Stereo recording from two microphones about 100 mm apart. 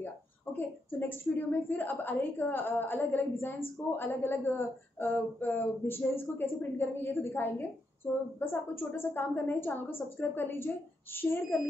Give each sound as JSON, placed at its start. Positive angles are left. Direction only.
{"t": 0.0, "sound": "a woman's voice", "side_deg": 20}